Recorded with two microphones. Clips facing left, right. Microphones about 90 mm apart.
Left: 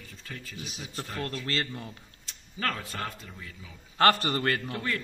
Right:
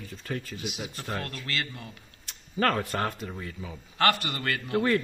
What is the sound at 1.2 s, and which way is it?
Speech, 30° left (ahead or behind).